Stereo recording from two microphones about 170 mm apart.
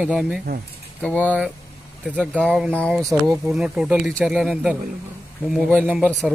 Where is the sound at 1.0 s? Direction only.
10° left (ahead or behind).